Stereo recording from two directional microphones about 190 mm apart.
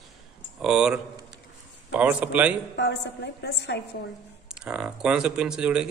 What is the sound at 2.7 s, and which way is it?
A woman's voice, 65° left (ahead or behind).